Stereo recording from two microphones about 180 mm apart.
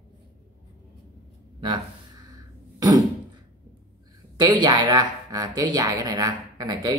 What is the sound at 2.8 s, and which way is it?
Throat clearing, 20° right (ahead or behind).